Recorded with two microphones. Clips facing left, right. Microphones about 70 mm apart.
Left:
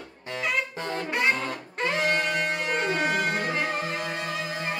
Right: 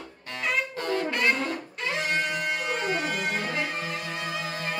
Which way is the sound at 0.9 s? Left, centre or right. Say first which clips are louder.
Right 1 dB; left.